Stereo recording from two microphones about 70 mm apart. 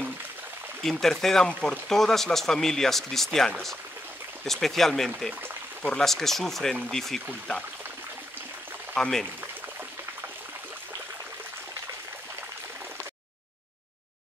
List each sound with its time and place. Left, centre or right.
0.8 s speech: centre
8.9 s speech: centre